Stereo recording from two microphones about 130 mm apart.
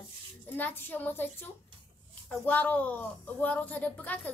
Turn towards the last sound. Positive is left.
turn(degrees=10)  # may be behind; listen again after turning